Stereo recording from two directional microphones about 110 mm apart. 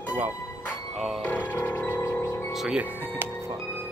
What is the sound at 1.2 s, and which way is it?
Music, 15° left (ahead or behind).